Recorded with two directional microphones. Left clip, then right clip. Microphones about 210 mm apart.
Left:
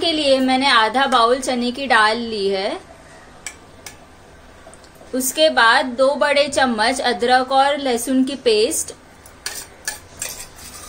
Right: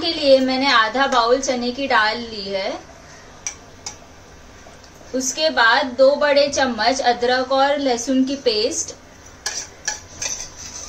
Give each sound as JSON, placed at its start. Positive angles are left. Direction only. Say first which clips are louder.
{"t": 0.0, "sound": "a woman's voice", "louder": "right 1 dB", "side_deg": 40}
{"t": 5.3, "sound": "a woman's voice", "louder": "left 2 dB", "side_deg": 35}